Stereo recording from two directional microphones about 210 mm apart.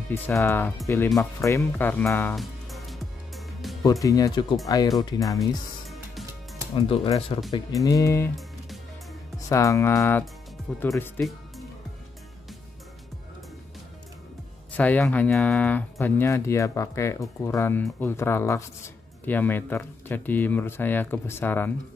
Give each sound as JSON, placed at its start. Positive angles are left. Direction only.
{"t": 0.1, "sound": "speech", "side_deg": 15}
{"t": 1.4, "sound": "music", "side_deg": 15}
{"t": 4.0, "sound": "speech", "side_deg": 15}
{"t": 5.9, "sound": "music", "side_deg": 0}
{"t": 6.7, "sound": "speech", "side_deg": 25}
{"t": 9.5, "sound": "speech", "side_deg": 15}
{"t": 14.8, "sound": "speech", "side_deg": 5}